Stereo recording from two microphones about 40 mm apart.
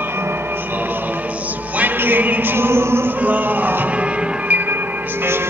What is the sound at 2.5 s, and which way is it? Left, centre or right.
Music, right.